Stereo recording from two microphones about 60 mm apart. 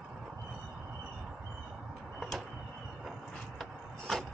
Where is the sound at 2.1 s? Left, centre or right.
Centre.